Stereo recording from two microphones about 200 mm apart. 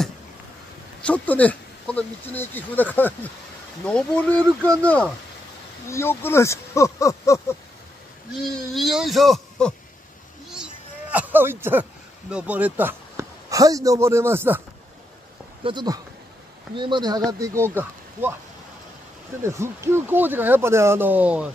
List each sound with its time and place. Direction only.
1.0 s speech: 5° left (ahead or behind)
8.4 s speech: centre (ahead or behind)
10.5 s a sound: 5° right (ahead or behind)
12.3 s a man's voice: 5° right (ahead or behind)
15.6 s speech: 20° right (ahead or behind)
19.4 s speech: 15° right (ahead or behind)